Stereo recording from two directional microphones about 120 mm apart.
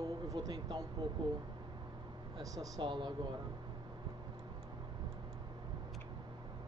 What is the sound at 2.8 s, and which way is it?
Speech, 40° right (ahead or behind).